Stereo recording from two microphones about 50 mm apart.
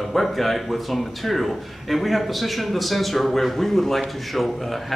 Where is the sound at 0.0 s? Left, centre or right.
Centre.